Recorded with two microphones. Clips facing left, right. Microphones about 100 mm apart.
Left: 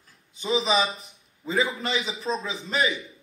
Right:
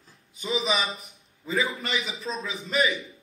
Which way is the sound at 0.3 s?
30° left (ahead or behind).